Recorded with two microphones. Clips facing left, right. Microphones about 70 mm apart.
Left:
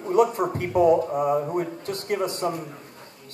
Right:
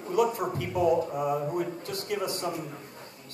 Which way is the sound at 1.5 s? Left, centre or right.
Left.